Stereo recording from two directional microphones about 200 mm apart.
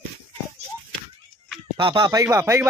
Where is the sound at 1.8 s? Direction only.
20° right (ahead or behind).